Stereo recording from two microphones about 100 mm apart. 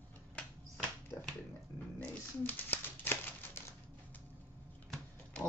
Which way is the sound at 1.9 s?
20° left (ahead or behind).